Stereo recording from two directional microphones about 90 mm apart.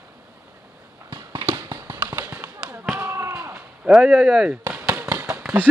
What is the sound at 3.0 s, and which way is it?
Slam, 30° right (ahead or behind).